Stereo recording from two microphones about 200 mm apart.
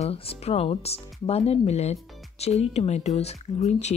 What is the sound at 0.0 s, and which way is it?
Speech, 30° left (ahead or behind).